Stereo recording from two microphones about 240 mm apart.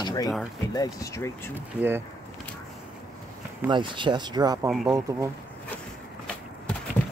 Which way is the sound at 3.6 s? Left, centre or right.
Centre.